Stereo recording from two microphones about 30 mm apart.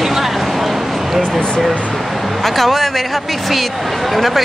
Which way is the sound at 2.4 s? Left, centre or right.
Centre.